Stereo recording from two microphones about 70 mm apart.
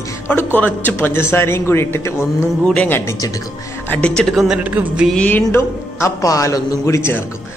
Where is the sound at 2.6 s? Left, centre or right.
Centre.